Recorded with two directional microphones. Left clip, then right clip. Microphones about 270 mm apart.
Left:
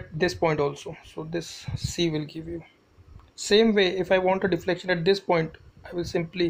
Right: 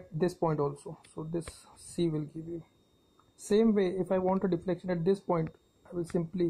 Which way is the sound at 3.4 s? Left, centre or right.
Centre.